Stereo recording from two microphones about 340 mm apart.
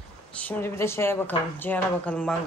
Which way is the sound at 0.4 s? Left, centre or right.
Centre.